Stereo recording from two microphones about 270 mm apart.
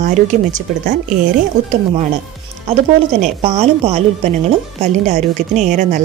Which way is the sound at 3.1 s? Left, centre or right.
Right.